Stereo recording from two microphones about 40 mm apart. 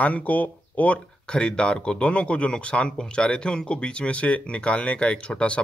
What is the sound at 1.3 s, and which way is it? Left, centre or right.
A man's voice, left.